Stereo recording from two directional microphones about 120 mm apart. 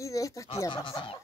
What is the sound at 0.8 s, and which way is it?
Speech, 45° left (ahead or behind).